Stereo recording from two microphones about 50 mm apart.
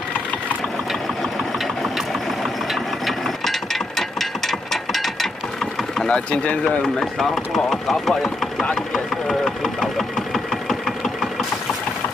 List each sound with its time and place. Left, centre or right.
2.7 s mechanisms: centre
6.0 s speech: centre
7.2 s speech: centre
8.9 s engine knocking: centre